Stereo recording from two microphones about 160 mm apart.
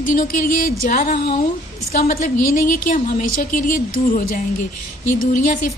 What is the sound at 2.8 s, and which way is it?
A woman's voice, 60° left (ahead or behind).